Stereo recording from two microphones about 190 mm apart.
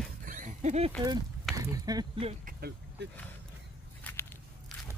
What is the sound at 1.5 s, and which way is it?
Speech, 20° right (ahead or behind).